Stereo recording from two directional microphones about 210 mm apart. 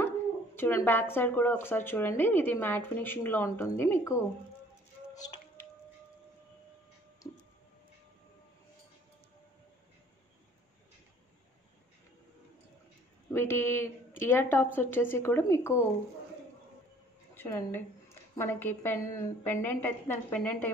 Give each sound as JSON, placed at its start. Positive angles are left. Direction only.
{"t": 0.6, "sound": "speech", "side_deg": 10}
{"t": 5.1, "sound": "a sound", "side_deg": 20}
{"t": 13.3, "sound": "speech", "side_deg": 10}
{"t": 17.3, "sound": "speech", "side_deg": 10}